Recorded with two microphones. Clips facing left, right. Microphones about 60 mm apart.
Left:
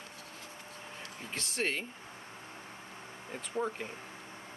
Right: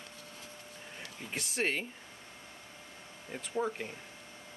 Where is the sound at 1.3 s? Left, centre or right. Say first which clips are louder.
Right 1 dB; centre.